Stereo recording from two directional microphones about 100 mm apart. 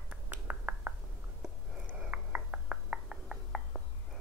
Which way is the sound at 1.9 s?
15° right (ahead or behind).